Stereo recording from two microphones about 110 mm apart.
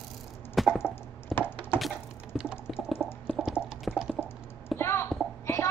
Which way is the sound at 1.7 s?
5° right (ahead or behind).